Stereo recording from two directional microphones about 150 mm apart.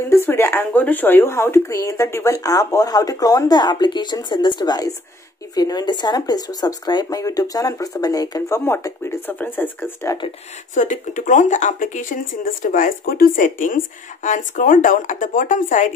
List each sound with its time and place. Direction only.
0.1 s speech: 15° left (ahead or behind)
10.7 s speech: 55° left (ahead or behind)